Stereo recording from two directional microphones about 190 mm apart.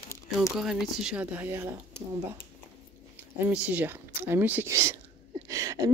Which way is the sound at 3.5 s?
10° right (ahead or behind).